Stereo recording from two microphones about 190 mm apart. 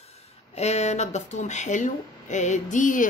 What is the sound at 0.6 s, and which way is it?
A woman's voice, 35° left (ahead or behind).